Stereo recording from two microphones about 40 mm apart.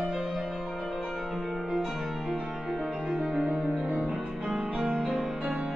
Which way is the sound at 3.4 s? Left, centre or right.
Right.